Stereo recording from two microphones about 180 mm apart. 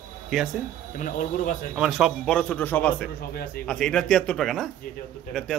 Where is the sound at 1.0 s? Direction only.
45° left (ahead or behind).